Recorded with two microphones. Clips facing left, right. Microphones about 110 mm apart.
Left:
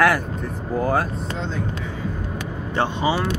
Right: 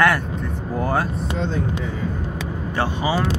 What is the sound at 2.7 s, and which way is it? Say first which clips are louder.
Speech: left 2 dB; 20° left (ahead or behind).